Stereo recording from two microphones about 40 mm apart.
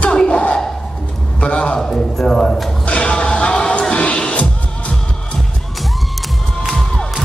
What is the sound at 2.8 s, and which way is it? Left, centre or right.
Music, left.